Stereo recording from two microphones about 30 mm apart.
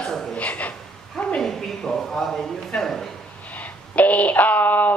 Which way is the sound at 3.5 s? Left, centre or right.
Left.